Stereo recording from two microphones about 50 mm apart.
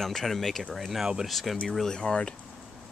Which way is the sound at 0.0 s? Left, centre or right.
Centre.